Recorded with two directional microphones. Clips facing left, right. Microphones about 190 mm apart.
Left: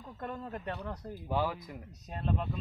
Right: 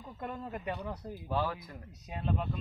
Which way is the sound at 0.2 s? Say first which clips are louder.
Even; 5° right (ahead or behind).